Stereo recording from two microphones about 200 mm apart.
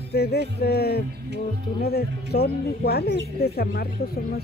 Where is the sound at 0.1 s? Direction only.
55° left (ahead or behind).